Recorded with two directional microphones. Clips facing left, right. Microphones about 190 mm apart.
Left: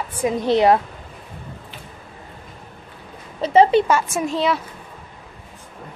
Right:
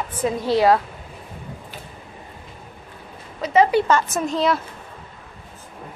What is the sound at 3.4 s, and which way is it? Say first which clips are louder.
Speech: left 3 dB; 30° left (ahead or behind).